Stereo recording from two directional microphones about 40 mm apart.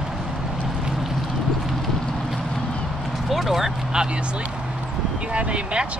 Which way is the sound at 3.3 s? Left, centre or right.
Centre.